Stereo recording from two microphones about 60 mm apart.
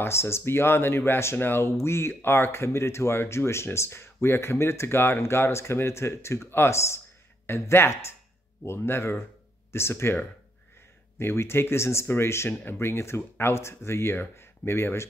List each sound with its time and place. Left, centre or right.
0.0 s speech: left
11.1 s speech: left